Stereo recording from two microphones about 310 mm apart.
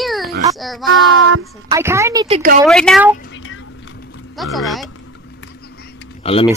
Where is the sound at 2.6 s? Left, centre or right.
Centre.